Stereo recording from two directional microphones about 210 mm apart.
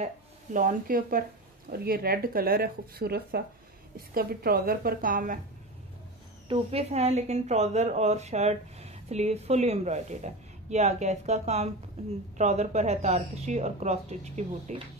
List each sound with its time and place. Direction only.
0.0 s speech: 40° right (ahead or behind)
6.5 s a woman's voice: 30° right (ahead or behind)